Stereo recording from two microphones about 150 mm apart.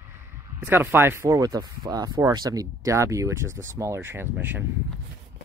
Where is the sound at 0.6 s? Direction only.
15° right (ahead or behind).